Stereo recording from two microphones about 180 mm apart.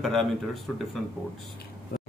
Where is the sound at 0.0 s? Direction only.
Centre (ahead or behind).